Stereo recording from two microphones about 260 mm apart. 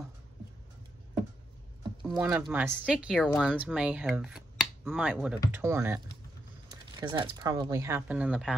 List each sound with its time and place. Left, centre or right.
2.0 s speech: centre